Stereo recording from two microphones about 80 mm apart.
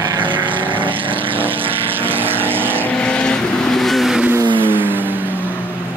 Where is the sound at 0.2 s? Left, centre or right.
Right.